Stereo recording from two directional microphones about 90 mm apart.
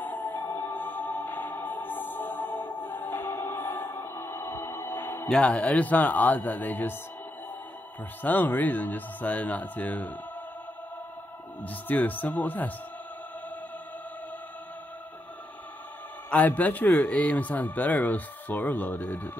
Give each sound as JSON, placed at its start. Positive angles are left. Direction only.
{"t": 0.0, "sound": "music", "side_deg": 20}
{"t": 3.9, "sound": "music", "side_deg": 40}
{"t": 4.3, "sound": "a sound", "side_deg": 25}
{"t": 5.3, "sound": "speech", "side_deg": 15}
{"t": 8.2, "sound": "speech", "side_deg": 20}
{"t": 11.6, "sound": "speech", "side_deg": 20}
{"t": 16.3, "sound": "speech", "side_deg": 20}